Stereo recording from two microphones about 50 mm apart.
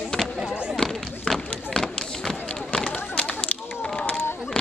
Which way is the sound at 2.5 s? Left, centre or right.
Centre.